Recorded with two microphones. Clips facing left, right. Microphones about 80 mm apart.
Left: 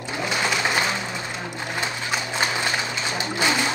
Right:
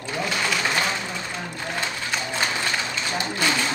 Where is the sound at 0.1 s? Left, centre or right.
Centre.